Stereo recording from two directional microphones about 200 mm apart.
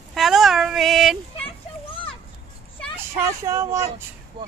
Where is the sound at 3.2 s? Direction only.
15° right (ahead or behind).